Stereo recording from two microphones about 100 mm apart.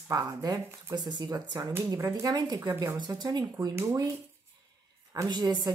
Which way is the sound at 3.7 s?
25° right (ahead or behind).